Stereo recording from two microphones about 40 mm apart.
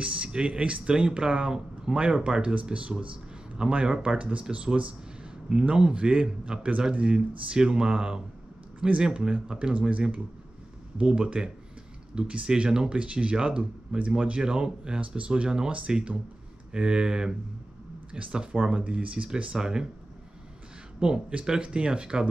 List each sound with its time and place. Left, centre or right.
0.0 s a man's voice: right
5.5 s a man's voice: right
12.9 s speech: right
13.6 s speech: right
14.2 s a man's voice: right
15.9 s a man's voice: centre
19.5 s a man's voice: centre
21.0 s a man's voice: right